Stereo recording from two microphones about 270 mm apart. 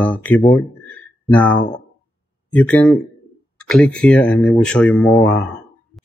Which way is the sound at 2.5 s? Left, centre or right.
Centre.